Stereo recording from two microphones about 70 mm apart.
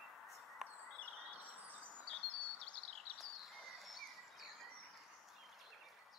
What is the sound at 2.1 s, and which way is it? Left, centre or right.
Bird vocalization, centre.